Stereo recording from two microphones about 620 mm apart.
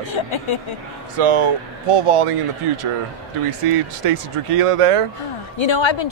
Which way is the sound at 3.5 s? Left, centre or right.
Right.